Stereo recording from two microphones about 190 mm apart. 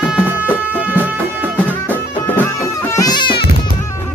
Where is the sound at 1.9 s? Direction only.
10° left (ahead or behind).